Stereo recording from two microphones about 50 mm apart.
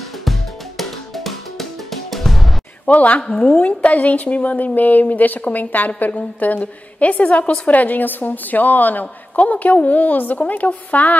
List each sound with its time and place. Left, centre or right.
0.2 s music: centre
2.9 s a woman's voice: left